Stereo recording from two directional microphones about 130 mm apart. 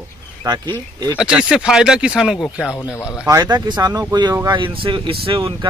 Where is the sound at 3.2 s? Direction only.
30° right (ahead or behind).